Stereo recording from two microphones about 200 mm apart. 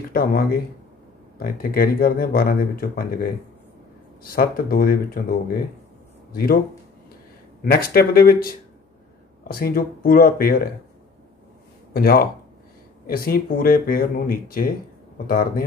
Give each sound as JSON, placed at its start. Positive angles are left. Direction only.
{"t": 0.1, "sound": "speech", "side_deg": 50}
{"t": 7.6, "sound": "speech", "side_deg": 50}
{"t": 11.9, "sound": "speech", "side_deg": 50}